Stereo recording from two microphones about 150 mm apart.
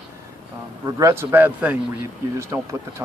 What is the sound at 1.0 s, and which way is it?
Speech, 20° right (ahead or behind).